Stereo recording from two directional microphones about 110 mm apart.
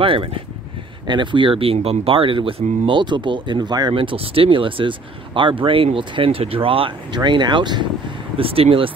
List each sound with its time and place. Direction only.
0.0 s speech: 55° right (ahead or behind)
7.2 s speech: 45° right (ahead or behind)
8.4 s speech: 60° right (ahead or behind)